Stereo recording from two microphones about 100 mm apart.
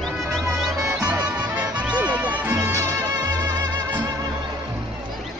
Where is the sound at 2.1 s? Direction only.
15° right (ahead or behind).